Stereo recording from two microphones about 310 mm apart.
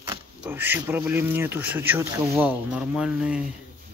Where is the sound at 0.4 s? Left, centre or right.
Centre.